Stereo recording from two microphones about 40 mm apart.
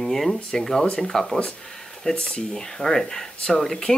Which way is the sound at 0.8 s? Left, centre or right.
Left.